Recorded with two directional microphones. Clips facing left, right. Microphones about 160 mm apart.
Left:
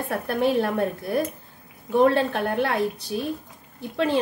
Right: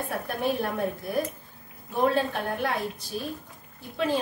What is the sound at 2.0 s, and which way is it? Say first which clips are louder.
A woman's voice: left 4 dB; 65° left (ahead or behind).